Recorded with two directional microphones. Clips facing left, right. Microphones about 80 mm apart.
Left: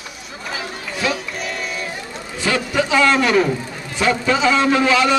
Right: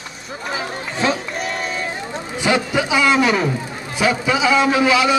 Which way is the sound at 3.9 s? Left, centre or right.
Centre.